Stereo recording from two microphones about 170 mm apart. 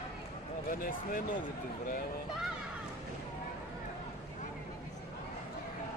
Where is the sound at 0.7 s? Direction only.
55° left (ahead or behind).